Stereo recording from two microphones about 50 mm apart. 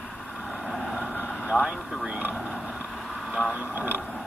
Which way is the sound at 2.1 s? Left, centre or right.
Right.